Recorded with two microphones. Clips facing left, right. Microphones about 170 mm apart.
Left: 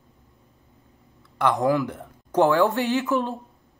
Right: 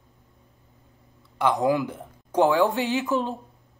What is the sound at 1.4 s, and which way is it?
A woman's voice, 20° right (ahead or behind).